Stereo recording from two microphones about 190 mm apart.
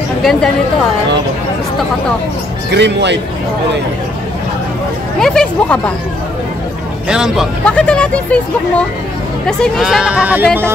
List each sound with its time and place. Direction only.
0.2 s a woman's voice: centre (ahead or behind)
2.7 s speech: 65° right (ahead or behind)
5.2 s speech: 5° left (ahead or behind)
7.1 s speech: 5° right (ahead or behind)